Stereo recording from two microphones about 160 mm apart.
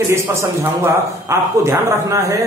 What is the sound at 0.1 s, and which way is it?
A man's voice, 15° right (ahead or behind).